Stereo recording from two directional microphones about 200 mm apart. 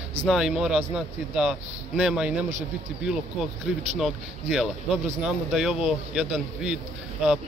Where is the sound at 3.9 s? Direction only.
Centre (ahead or behind).